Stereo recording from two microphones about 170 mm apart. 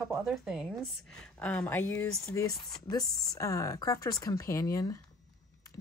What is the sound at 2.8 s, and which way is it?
Speech, 20° left (ahead or behind).